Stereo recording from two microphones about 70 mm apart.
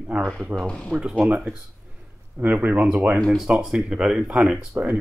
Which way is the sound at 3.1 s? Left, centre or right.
Centre.